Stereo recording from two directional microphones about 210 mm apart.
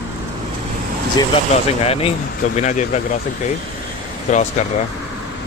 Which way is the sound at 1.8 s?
30° left (ahead or behind).